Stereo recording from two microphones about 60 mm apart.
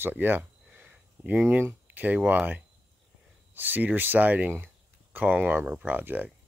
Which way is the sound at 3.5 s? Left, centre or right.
Right.